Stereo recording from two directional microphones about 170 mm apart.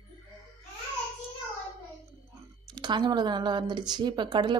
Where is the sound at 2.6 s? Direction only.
25° right (ahead or behind).